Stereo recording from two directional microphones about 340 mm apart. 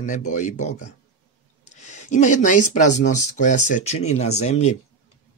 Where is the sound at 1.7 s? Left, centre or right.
Left.